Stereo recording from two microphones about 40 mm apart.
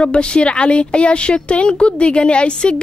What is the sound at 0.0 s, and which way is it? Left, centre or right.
A woman's voice, left.